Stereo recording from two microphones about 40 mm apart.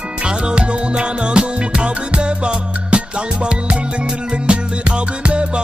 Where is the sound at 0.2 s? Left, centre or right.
Right.